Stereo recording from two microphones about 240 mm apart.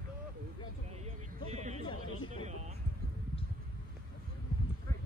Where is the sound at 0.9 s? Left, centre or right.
Right.